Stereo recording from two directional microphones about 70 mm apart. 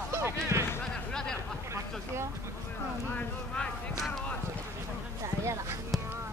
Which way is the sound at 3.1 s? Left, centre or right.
Centre.